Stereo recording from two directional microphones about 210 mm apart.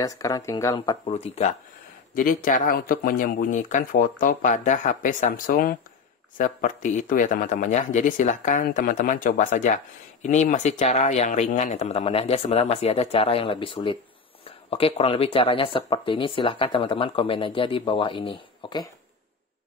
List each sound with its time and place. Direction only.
0.0 s speech: 15° left (ahead or behind)
1.1 s speech: 30° left (ahead or behind)
2.1 s speech: 40° left (ahead or behind); by 18.9 s 20° left (ahead or behind)